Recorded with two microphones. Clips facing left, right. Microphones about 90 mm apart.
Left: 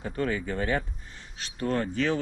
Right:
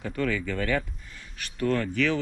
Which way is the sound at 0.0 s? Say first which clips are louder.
Right 1 dB; 30° left (ahead or behind).